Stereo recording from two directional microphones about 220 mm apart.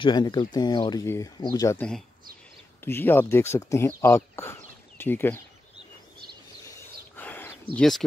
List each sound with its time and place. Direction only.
0.0 s speech: 20° left (ahead or behind)
7.2 s a sound: 10° left (ahead or behind)
7.7 s speech: centre (ahead or behind)